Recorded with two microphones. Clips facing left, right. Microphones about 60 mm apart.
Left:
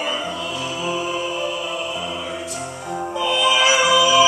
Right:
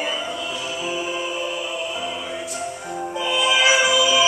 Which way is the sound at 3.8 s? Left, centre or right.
Centre.